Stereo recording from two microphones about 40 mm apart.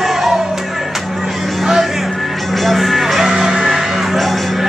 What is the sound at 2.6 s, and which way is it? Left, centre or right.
Music, centre.